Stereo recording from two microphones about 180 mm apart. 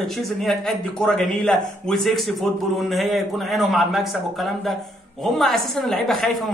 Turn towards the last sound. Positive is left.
turn(degrees=0)  # may be behind; listen again after turning